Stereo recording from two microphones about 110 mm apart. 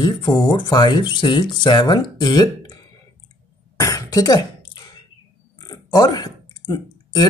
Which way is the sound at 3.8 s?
30° left (ahead or behind).